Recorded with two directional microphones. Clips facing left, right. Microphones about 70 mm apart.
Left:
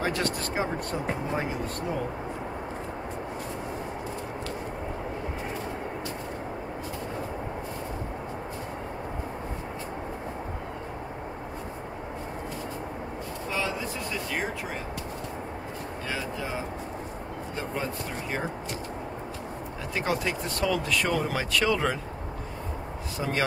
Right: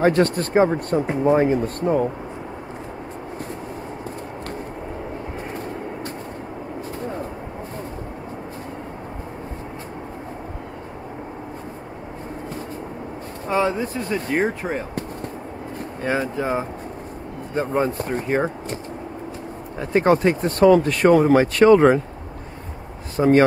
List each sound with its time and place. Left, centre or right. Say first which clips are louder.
0.0 s speech: right 11 dB; right
13.5 s speech: right 10 dB; right
19.8 s speech: right 12 dB; right
23.1 s speech: right 15 dB; right